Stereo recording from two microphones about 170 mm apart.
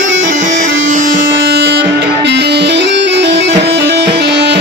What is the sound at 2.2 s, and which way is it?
Music, 85° right.